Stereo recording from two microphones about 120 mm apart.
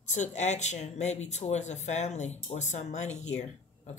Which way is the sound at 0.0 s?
80° left.